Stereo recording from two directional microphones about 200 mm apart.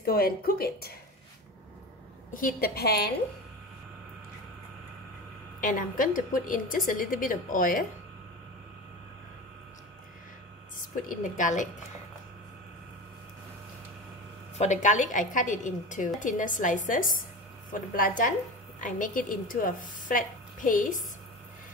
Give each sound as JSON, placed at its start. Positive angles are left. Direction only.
{"t": 0.0, "sound": "a woman's voice", "side_deg": 50}
{"t": 2.3, "sound": "a woman's voice", "side_deg": 45}
{"t": 5.6, "sound": "a woman's voice", "side_deg": 45}
{"t": 11.1, "sound": "a woman's voice", "side_deg": 40}
{"t": 14.6, "sound": "a woman's voice", "side_deg": 35}